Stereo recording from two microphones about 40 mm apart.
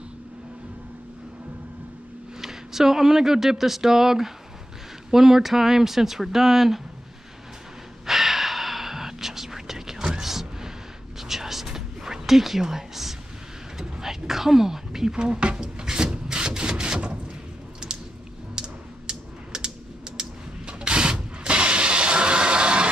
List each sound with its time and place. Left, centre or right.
2.4 s speech: centre
8.1 s whispering: centre
13.7 s a sound: centre
15.1 s rub: right
18.5 s typing: right
20.2 s a sound: right